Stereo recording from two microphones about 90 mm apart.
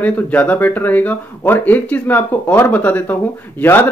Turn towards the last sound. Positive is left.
turn(degrees=25)  # may be behind; listen again after turning